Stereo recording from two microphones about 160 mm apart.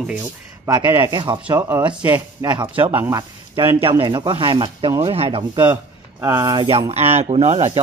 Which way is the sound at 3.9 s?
25° right (ahead or behind).